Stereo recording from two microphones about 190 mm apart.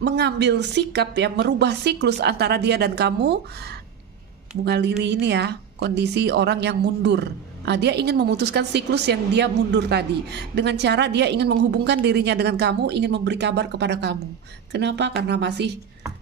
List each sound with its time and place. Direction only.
0.0 s a woman's voice: 65° right (ahead or behind)
4.6 s a woman's voice: 60° right (ahead or behind)